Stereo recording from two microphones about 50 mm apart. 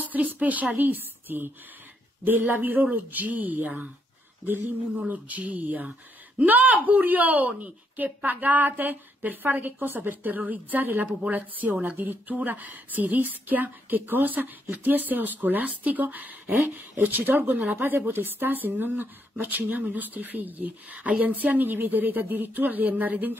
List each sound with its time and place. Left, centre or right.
0.0 s speech: right
4.9 s speech: right
17.9 s speech: right
19.7 s speech: right
20.9 s speech: right
21.2 s speech: right